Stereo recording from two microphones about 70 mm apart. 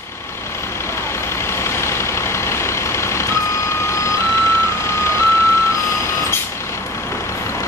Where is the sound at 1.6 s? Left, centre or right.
Left.